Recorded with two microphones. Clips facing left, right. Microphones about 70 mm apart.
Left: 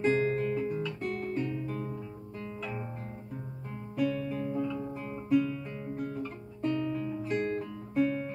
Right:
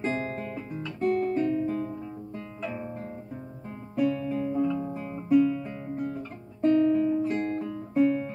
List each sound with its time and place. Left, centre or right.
0.0 s guitar: right
0.4 s guitar: centre
1.3 s guitar: centre
1.7 s music: centre
3.9 s music: centre
4.3 s music: centre
4.9 s guitar: centre
5.3 s music: centre
7.6 s music: centre